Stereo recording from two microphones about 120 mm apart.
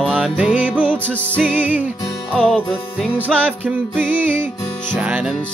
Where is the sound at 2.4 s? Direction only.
10° left (ahead or behind).